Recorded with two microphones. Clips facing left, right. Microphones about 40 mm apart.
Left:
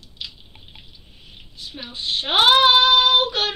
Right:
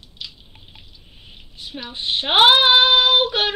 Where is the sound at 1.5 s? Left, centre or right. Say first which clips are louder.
Right 3 dB; right.